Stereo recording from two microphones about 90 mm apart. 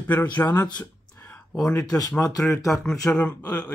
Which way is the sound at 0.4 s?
20° left (ahead or behind).